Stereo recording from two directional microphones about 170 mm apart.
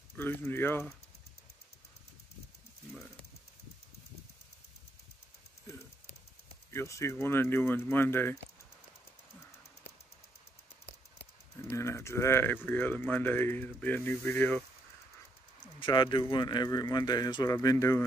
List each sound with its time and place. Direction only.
0.1 s speech: 10° left (ahead or behind)
6.7 s speech: 15° left (ahead or behind)
11.7 s speech: 15° left (ahead or behind)
15.6 s speech: 25° left (ahead or behind)